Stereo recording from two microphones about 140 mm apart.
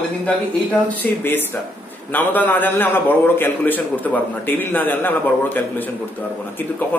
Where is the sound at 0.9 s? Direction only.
15° left (ahead or behind).